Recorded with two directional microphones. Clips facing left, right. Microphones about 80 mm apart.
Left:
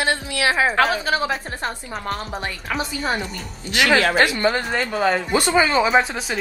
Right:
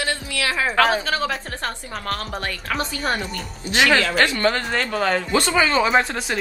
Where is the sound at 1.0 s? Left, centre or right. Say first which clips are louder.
Left 2 dB; centre.